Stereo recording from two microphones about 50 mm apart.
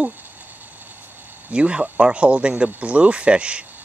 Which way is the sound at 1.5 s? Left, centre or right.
Right.